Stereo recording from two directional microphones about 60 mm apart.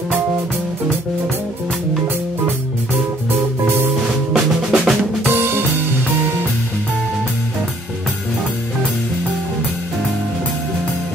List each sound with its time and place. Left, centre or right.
4.3 s drum: centre
5.3 s drum kit: right